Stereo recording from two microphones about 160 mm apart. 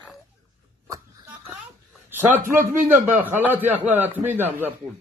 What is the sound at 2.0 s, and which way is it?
A man's voice, 15° right (ahead or behind).